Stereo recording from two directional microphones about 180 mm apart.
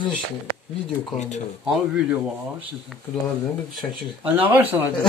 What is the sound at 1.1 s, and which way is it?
Speech, 40° left (ahead or behind).